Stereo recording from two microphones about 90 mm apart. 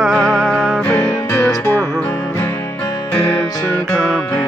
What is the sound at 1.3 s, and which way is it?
Music, 25° left (ahead or behind).